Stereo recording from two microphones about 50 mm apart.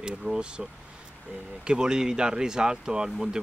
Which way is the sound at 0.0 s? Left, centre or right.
Centre.